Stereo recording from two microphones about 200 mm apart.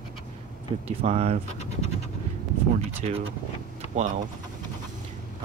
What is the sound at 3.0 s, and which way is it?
Speech, 30° right (ahead or behind).